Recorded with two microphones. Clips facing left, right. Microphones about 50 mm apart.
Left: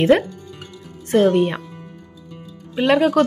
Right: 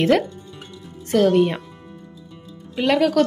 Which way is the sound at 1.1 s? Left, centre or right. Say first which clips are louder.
Left 1 dB; left.